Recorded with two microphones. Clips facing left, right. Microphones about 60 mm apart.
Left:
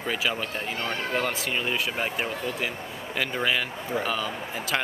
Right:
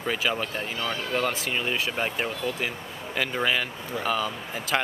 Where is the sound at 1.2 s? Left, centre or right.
Centre.